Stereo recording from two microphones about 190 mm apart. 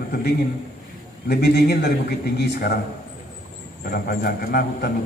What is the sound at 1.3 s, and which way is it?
Speech, 55° left (ahead or behind).